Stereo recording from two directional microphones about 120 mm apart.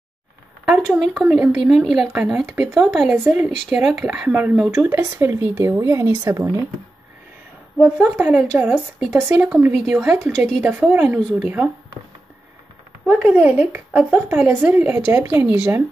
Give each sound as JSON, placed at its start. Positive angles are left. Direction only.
{"t": 0.7, "sound": "speech", "side_deg": 0}
{"t": 3.3, "sound": "speech", "side_deg": -10}
{"t": 7.8, "sound": "speech", "side_deg": -15}
{"t": 10.3, "sound": "speech", "side_deg": 5}
{"t": 10.6, "sound": "speech", "side_deg": -15}
{"t": 13.2, "sound": "speech", "side_deg": -15}